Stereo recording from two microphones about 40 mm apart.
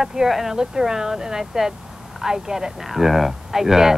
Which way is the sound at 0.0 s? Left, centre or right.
Centre.